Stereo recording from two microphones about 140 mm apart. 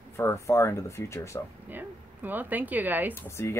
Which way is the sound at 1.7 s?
15° right (ahead or behind).